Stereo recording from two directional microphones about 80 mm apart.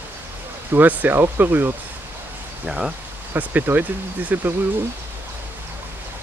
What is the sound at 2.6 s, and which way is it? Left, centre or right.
Speech, centre.